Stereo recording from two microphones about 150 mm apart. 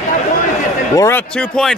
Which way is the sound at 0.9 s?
20° left (ahead or behind).